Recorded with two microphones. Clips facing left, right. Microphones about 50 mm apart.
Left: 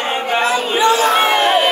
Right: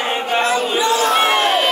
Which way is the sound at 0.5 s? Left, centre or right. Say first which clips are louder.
Left 2 dB; left.